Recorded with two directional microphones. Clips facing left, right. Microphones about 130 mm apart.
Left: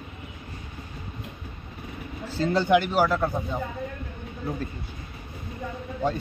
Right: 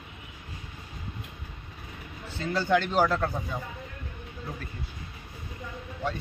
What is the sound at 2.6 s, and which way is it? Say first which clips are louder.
Speech: left 1 dB; 10° left (ahead or behind).